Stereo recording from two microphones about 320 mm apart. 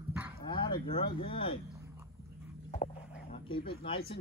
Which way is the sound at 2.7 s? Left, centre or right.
Left.